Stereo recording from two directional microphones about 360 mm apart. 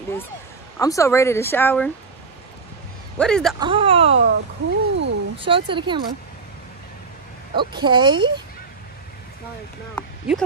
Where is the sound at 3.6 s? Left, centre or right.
Centre.